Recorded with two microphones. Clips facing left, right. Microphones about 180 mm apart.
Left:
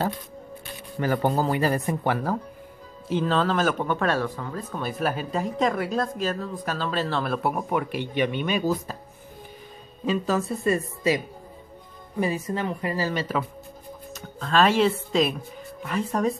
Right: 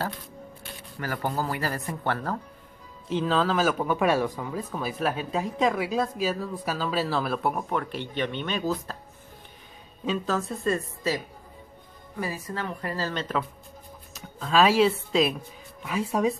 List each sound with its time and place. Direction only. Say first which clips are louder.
0.9 s speech: left 6 dB; 20° left (ahead or behind)
3.1 s speech: left 1 dB; centre (ahead or behind)
10.0 s speech: left 3 dB; 5° left (ahead or behind)
12.2 s speech: left 6 dB; 20° left (ahead or behind); by 16.3 s 5° right (ahead or behind)